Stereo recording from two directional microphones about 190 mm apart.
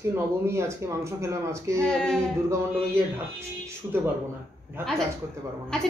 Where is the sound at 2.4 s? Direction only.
15° right (ahead or behind).